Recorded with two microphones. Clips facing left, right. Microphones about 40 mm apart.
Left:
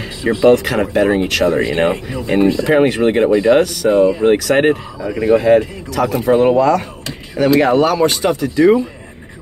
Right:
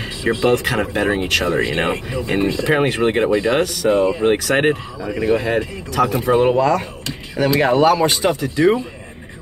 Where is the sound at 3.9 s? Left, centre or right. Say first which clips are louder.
Left 5 dB; right.